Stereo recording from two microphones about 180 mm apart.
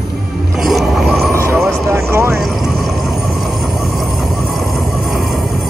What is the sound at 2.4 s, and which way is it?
Vehicle, centre (ahead or behind).